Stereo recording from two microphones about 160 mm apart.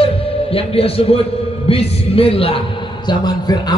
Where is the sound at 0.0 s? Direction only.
35° left (ahead or behind).